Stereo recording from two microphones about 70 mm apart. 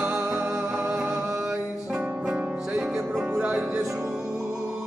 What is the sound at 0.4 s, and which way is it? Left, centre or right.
Music, right.